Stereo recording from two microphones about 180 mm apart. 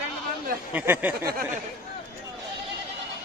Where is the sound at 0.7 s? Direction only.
10° right (ahead or behind).